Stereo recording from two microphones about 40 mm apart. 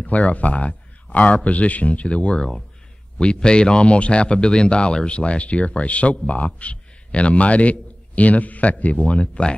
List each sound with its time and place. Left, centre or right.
0.0 s speech: left